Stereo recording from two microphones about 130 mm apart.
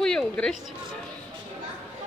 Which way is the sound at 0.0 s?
5° left (ahead or behind).